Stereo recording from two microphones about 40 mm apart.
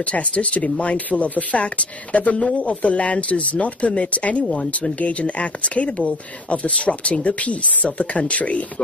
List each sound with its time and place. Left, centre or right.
0.0 s speech: left